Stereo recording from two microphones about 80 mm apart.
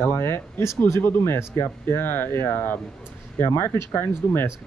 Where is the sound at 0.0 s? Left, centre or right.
Left.